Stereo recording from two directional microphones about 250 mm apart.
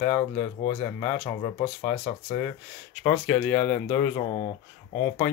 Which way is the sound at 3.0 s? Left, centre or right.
Centre.